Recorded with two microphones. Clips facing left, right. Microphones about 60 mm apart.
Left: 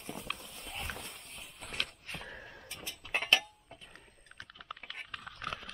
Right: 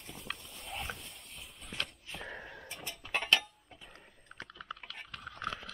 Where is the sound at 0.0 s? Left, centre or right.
Centre.